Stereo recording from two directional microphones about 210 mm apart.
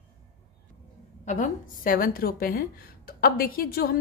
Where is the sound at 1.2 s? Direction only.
35° left (ahead or behind).